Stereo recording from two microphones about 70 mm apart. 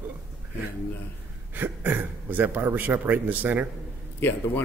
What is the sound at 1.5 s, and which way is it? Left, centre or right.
Speech, right.